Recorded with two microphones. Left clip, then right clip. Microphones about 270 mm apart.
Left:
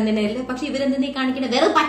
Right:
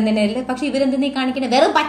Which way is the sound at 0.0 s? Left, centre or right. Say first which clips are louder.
Right 3 dB; right.